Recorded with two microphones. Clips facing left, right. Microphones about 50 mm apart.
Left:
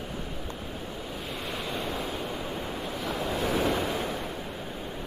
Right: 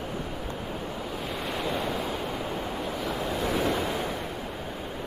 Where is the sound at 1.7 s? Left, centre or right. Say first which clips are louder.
Right 4 dB; centre.